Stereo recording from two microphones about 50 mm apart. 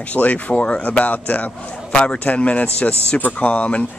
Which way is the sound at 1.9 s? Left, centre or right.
Left.